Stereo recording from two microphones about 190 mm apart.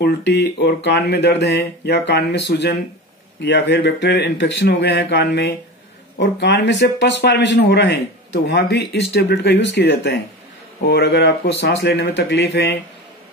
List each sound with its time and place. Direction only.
0.0 s speech: 60° left (ahead or behind)